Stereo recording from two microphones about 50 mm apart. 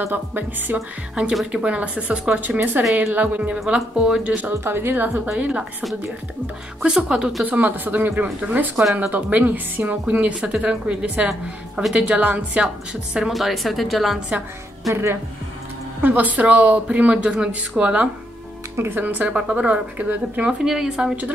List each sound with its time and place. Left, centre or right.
0.3 s speech: right
1.2 s a woman's voice: right
2.4 s speech: right
3.7 s a woman's voice: centre
4.4 s speech: right
5.4 s a woman's voice: right
6.8 s a woman's voice: centre
7.4 s a woman's voice: right
12.6 s a woman's voice: centre
13.3 s a woman's voice: centre
16.0 s a woman's voice: right
18.9 s a woman's voice: right
20.4 s a woman's voice: centre